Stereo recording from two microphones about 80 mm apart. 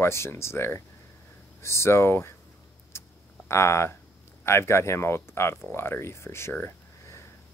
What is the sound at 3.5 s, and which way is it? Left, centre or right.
Speech, left.